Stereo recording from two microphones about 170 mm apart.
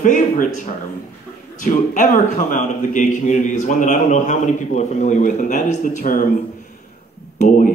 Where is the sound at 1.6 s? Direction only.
50° left (ahead or behind).